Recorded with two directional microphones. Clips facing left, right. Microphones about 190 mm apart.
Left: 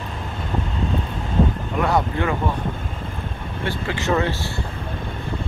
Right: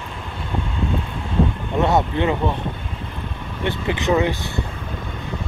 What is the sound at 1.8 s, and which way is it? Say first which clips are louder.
Speech: right 2 dB; 20° right (ahead or behind).